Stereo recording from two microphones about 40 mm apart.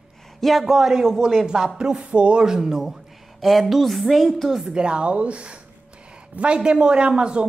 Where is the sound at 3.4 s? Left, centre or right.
Centre.